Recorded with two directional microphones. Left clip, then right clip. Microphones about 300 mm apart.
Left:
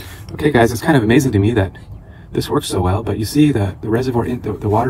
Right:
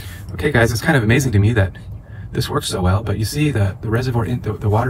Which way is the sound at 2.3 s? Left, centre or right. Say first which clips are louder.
Left 3 dB; centre.